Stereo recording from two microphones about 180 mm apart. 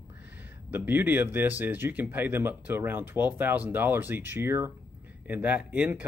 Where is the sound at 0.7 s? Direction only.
10° right (ahead or behind).